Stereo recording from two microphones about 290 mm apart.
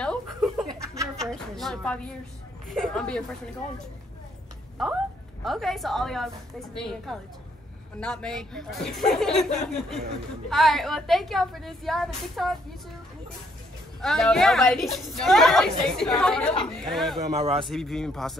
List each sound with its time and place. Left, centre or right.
0.0 s a sound: centre
0.7 s chuckle: centre
1.0 s a sound: centre
2.7 s a woman's voice: centre
5.4 s a woman's voice: centre
14.0 s a woman's voice: centre
17.3 s a man's voice: right
17.6 s a woman's voice: centre